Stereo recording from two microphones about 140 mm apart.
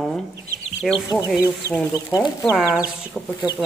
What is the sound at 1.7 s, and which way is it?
Speech, 20° left (ahead or behind).